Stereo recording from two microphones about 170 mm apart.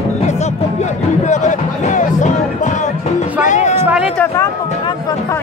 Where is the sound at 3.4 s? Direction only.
45° left (ahead or behind).